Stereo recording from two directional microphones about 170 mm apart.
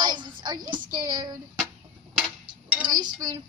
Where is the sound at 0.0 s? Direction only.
25° right (ahead or behind).